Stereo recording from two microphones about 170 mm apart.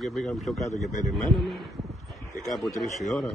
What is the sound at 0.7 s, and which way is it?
Speech, 45° left (ahead or behind).